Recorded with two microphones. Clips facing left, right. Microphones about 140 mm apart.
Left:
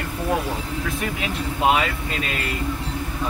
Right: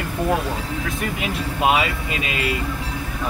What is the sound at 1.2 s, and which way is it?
Speech, 10° right (ahead or behind).